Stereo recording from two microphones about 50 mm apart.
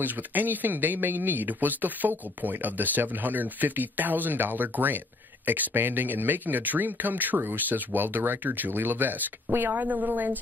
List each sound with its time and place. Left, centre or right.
0.0 s speech: right